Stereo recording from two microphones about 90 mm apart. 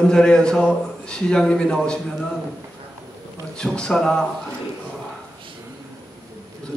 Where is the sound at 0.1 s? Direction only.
10° left (ahead or behind).